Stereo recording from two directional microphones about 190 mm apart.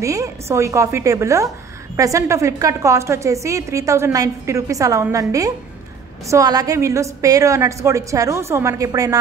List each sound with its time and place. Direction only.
0.0 s a woman's voice: 15° right (ahead or behind)
6.2 s a woman's voice: 20° right (ahead or behind)